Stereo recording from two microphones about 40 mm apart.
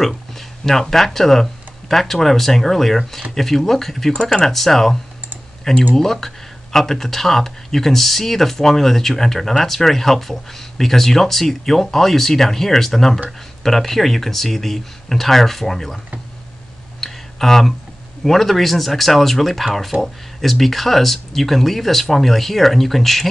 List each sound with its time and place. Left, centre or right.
0.7 s speech: centre
5.9 s speech: centre
17.0 s a sound: centre
18.2 s speech: centre